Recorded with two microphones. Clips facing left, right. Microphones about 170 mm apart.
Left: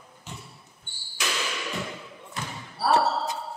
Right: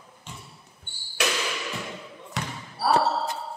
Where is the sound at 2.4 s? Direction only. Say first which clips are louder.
Right 3 dB; 85° right.